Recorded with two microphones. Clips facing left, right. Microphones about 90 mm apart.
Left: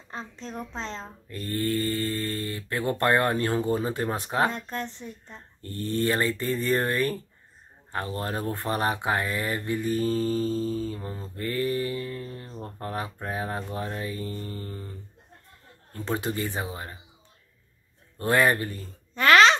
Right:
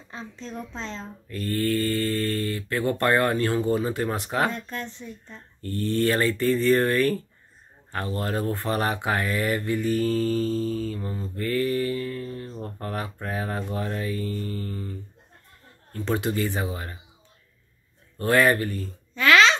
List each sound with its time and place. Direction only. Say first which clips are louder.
0.7 s speech: even; 25° left (ahead or behind)
16.2 s speech: right 4 dB; 30° left (ahead or behind)
18.2 s speech: right 2 dB; 25° left (ahead or behind)
19.1 s babbling: left 1 dB; 45° left (ahead or behind)